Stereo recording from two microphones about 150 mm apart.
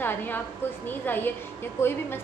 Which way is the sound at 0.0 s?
15° left (ahead or behind).